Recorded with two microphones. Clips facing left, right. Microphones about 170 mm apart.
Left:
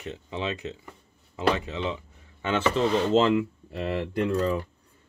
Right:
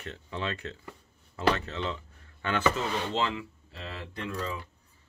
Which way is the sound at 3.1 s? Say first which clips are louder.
Left 10 dB; 55° left (ahead or behind).